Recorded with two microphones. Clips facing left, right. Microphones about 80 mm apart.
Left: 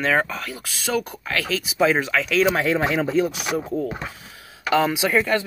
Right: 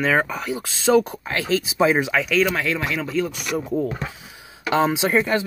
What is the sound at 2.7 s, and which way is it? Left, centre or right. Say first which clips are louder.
Speech: left 4 dB; left.